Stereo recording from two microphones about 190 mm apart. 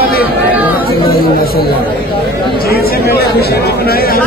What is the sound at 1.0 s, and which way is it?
Speech, 50° left (ahead or behind).